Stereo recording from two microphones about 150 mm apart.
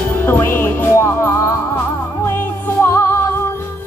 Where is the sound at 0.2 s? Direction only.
15° left (ahead or behind).